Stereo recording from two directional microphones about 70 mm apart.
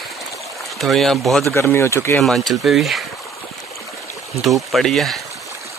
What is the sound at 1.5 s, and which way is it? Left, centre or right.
Speech, left.